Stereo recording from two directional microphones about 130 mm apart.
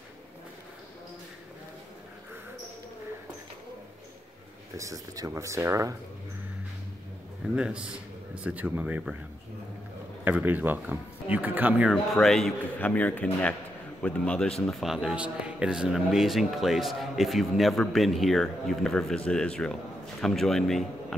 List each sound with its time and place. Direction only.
4.7 s speech: 25° right (ahead or behind)
7.5 s speech: 10° right (ahead or behind)
10.2 s speech: 15° right (ahead or behind)
11.9 s speech: 5° left (ahead or behind)
14.7 s speech: centre (ahead or behind)